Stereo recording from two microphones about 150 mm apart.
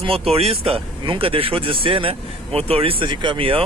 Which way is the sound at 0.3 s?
40° right (ahead or behind).